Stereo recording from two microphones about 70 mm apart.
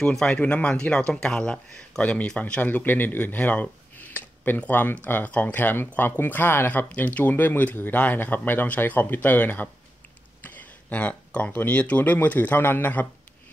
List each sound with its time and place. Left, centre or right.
0.0 s speech: centre; by 13.1 s left